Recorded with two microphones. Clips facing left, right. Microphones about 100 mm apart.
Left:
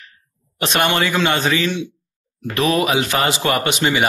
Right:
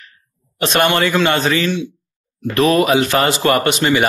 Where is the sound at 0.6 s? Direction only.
20° left (ahead or behind).